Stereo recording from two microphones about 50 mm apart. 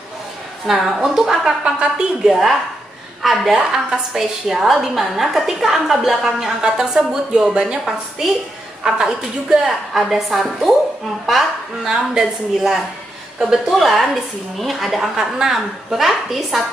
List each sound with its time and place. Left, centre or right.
0.7 s a woman's voice: centre
1.6 s a woman's voice: right
2.2 s a woman's voice: centre
11.8 s a woman's voice: centre